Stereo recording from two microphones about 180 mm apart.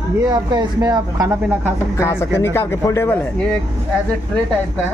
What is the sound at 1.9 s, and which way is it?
Speech, 15° left (ahead or behind).